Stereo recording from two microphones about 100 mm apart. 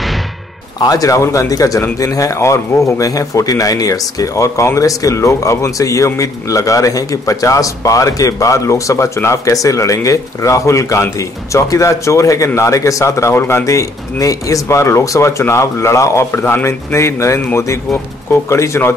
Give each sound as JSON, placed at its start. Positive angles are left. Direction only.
{"t": 0.7, "sound": "a man's voice", "side_deg": 40}